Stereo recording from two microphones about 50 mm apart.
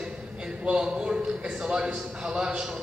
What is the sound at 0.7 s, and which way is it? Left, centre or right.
A man's voice, centre.